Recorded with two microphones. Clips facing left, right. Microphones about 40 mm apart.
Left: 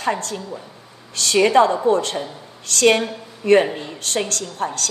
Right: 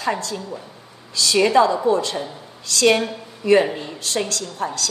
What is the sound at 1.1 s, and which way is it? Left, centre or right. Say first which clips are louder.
A woman's voice: left 1 dB; left.